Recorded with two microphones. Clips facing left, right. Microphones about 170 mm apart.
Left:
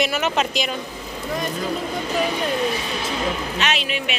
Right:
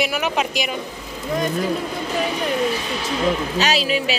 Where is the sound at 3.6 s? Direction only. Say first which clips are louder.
Right 4 dB; 35° right (ahead or behind).